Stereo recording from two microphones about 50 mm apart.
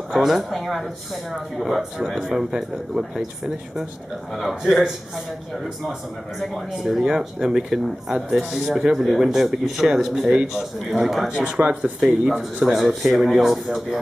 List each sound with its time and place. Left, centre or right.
0.1 s speech: centre
6.9 s speech: centre
12.0 s speech: centre